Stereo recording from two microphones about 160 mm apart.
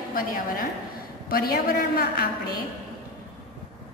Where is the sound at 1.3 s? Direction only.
65° left (ahead or behind).